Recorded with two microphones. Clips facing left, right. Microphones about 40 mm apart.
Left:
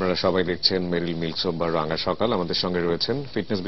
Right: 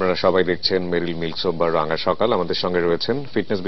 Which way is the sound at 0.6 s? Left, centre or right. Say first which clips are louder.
Right 3 dB; centre.